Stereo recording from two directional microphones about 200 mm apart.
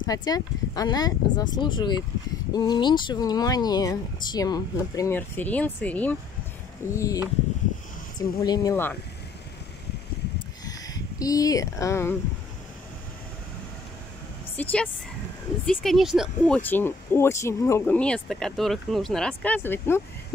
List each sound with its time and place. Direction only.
0.0 s speech: 20° left (ahead or behind)
8.2 s speech: 15° left (ahead or behind)
10.6 s speech: 20° left (ahead or behind)
14.6 s speech: 5° left (ahead or behind)